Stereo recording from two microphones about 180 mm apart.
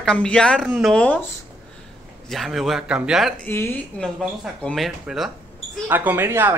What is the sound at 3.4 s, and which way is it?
Speech, 10° left (ahead or behind).